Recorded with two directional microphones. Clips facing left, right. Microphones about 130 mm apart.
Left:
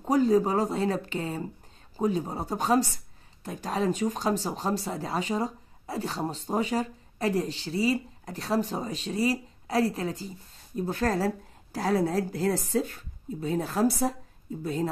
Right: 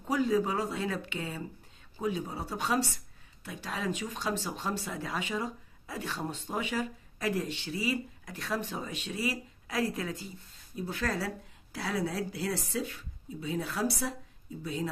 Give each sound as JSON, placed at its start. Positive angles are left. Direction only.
{"t": 0.0, "sound": "speech", "side_deg": 40}